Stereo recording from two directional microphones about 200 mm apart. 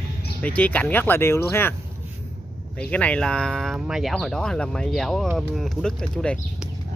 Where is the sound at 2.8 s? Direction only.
5° left (ahead or behind).